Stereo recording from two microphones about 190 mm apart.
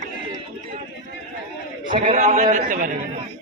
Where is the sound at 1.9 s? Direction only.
40° right (ahead or behind).